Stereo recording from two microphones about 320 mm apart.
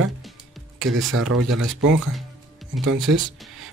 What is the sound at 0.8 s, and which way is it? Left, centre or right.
Speech, right.